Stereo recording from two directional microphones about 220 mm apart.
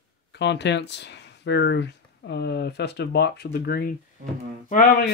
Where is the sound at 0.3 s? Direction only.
50° left (ahead or behind); by 5.1 s 35° left (ahead or behind).